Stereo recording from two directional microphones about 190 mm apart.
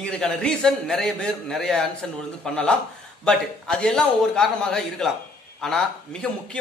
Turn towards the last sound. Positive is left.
turn(degrees=5)  # may be behind; listen again after turning